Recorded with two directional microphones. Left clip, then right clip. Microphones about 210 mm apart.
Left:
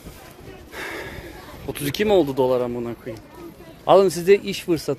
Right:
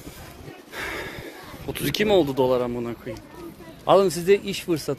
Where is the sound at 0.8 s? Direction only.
10° left (ahead or behind).